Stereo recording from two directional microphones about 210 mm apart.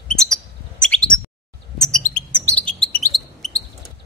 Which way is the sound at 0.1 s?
Centre (ahead or behind).